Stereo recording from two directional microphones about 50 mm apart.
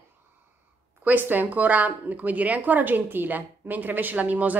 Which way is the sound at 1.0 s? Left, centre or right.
Right.